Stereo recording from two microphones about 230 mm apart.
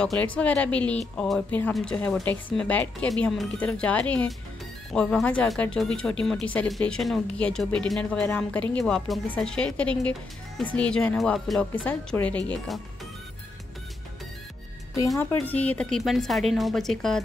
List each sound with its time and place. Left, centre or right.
0.0 s speech: centre
15.0 s speech: centre